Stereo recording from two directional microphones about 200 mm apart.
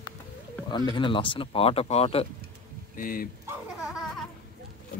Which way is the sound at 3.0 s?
45° left (ahead or behind).